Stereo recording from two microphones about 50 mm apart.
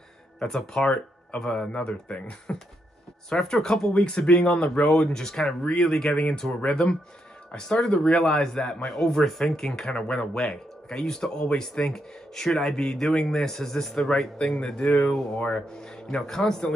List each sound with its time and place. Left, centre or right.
0.4 s speech: centre
1.5 s speech: centre
3.3 s speech: centre
14.8 s speech: left; by 16.7 s centre